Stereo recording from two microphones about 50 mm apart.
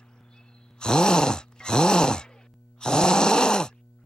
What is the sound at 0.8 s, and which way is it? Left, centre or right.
Groan, centre.